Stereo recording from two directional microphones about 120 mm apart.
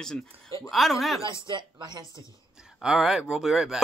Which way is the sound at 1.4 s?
40° right (ahead or behind).